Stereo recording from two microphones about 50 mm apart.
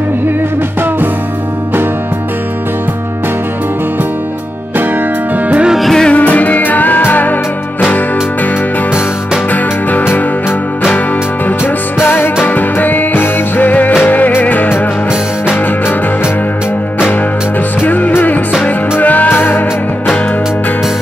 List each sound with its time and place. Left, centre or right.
5.8 s music: centre
6.0 s music: left
9.5 s music: left
11.4 s music: left
17.8 s music: left